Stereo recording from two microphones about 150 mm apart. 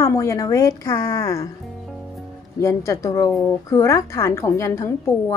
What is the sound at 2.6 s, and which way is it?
Speech, 20° left (ahead or behind).